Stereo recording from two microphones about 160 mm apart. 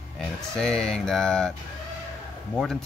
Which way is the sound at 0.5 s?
5° left (ahead or behind).